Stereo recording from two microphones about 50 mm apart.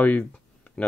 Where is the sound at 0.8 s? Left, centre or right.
Centre.